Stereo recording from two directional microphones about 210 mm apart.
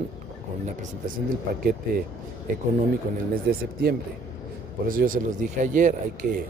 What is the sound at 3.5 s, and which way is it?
Speech, 50° right (ahead or behind).